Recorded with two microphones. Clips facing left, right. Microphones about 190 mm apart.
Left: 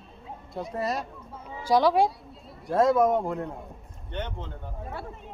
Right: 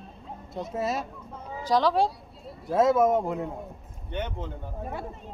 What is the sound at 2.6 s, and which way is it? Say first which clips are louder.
Speech: even; centre (ahead or behind).